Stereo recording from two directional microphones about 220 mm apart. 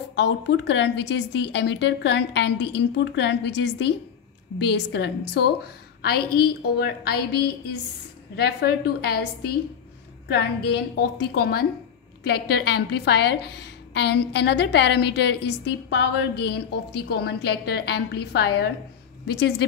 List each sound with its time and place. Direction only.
0.1 s a woman's voice: 55° left (ahead or behind)
11.0 s a woman's voice: 45° left (ahead or behind)